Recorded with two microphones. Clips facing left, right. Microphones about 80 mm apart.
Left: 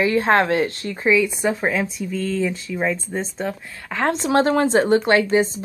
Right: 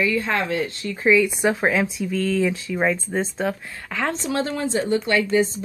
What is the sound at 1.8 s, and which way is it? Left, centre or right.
Speech, right.